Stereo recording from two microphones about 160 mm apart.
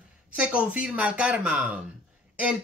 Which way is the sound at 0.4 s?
5° right (ahead or behind).